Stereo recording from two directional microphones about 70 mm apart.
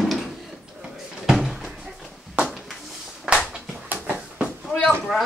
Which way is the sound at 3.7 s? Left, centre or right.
Right.